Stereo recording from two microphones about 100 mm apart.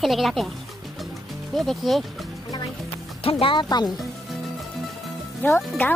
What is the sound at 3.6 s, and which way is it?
Speech, 45° left (ahead or behind).